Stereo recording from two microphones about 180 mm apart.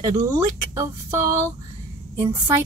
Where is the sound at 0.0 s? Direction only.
20° right (ahead or behind).